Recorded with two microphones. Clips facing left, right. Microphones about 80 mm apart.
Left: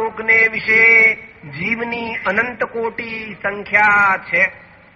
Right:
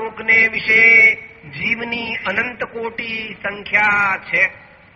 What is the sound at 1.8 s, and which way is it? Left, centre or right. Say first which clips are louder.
Speech: left 2 dB; left.